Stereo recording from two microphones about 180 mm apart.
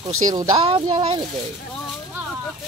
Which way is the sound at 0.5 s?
35° right (ahead or behind).